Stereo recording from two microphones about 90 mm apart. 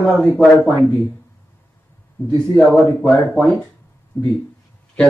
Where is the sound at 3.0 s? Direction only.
10° left (ahead or behind).